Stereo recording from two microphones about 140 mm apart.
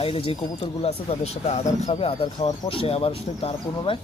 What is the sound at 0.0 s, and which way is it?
Speech, 40° left (ahead or behind).